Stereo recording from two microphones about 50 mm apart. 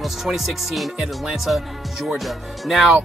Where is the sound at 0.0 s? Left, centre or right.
Centre.